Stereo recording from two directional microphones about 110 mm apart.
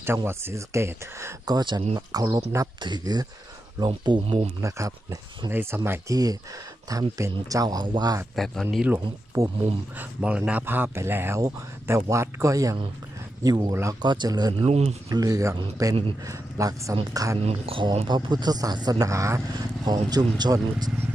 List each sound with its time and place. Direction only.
0.0 s speech: 20° right (ahead or behind)
1.5 s speech: 40° right (ahead or behind)
4.6 s speech: 30° right (ahead or behind)
5.5 s speech: 20° right (ahead or behind)
5.9 s speech: 30° right (ahead or behind)
8.4 s speech: centre (ahead or behind)
8.8 s speech: 25° right (ahead or behind)
9.9 s speech: 10° right (ahead or behind); by 13.9 s 30° right (ahead or behind)
14.0 s speech: 40° right (ahead or behind)
14.6 s speech: 75° right (ahead or behind)
15.0 s speech: 35° right (ahead or behind)
17.4 s speech: 65° right (ahead or behind)
18.0 s speech: 40° right (ahead or behind)